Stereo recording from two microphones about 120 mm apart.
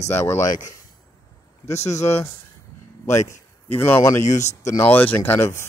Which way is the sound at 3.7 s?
15° left (ahead or behind).